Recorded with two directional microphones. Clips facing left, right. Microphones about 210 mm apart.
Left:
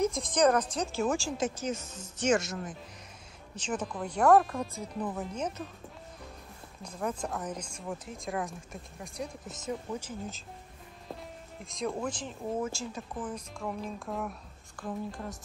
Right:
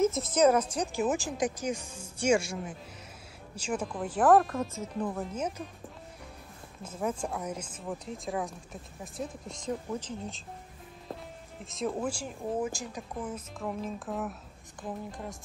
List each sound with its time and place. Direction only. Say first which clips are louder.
0.0 s speech: right 2 dB; 5° right (ahead or behind)
6.8 s speech: right 2 dB; 5° right (ahead or behind)
11.6 s speech: right 1 dB; centre (ahead or behind)